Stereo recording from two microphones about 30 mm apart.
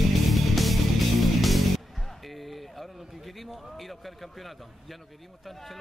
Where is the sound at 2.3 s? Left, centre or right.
Centre.